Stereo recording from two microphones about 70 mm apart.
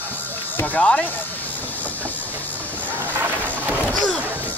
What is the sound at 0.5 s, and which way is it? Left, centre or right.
Speech, left.